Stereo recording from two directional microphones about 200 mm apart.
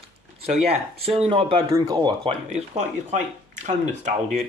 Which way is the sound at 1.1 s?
25° right (ahead or behind).